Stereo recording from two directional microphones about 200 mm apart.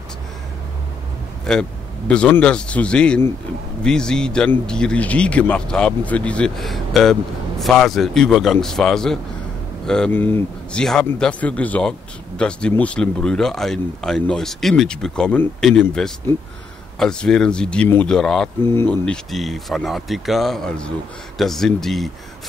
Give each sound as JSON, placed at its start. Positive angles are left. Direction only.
{"t": 1.4, "sound": "speech", "side_deg": 5}
{"t": 19.0, "sound": "speech", "side_deg": 0}